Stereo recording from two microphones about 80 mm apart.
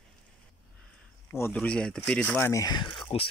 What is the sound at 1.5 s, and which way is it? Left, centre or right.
Speech, centre.